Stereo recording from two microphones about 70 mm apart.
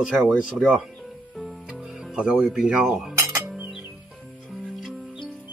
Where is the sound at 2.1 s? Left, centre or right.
Centre.